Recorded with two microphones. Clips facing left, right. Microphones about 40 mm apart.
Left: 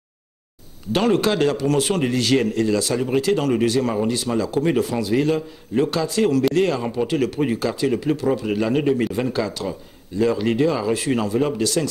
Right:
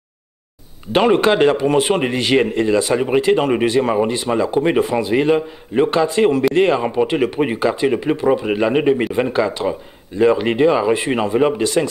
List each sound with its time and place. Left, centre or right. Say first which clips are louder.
0.9 s speech: right 5 dB; right